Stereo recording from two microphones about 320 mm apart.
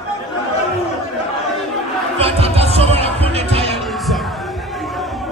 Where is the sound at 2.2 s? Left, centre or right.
Centre.